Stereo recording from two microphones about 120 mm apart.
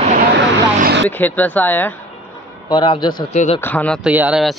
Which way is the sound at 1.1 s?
15° left (ahead or behind).